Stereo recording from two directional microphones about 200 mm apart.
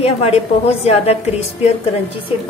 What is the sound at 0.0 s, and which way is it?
A woman's voice, 30° left (ahead or behind).